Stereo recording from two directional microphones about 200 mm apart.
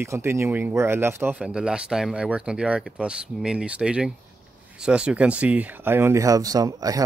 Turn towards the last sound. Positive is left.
turn(degrees=-15)  # may be behind; listen again after turning